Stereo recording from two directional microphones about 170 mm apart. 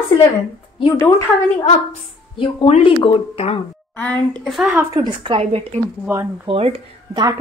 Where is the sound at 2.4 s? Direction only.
35° left (ahead or behind).